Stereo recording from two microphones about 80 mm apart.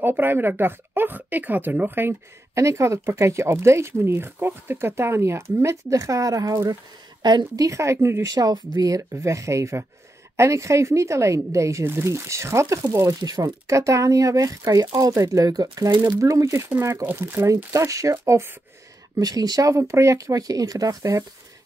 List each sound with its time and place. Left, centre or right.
0.0 s speech: right
7.2 s a woman's voice: right
7.6 s speech: right
8.4 s speech: right
13.3 s speech: right
17.0 s speech: right
17.7 s speech: right
19.1 s speech: right
19.8 s speech: right